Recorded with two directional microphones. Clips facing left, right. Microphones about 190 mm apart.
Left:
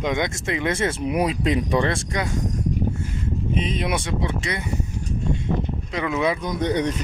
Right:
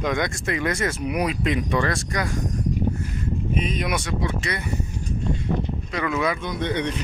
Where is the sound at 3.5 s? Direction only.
25° left (ahead or behind).